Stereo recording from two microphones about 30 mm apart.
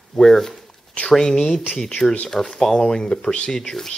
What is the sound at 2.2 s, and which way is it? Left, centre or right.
Speech, centre.